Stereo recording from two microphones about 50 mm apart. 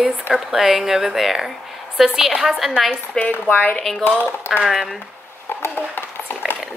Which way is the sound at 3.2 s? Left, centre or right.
Left.